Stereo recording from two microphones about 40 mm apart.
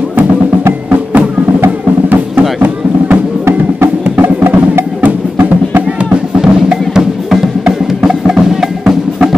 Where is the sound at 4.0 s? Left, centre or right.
Right.